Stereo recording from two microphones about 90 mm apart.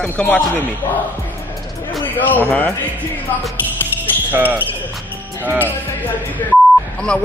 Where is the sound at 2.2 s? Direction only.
20° left (ahead or behind).